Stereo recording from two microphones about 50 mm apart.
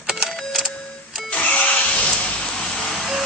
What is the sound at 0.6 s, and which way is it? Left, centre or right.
Music, centre.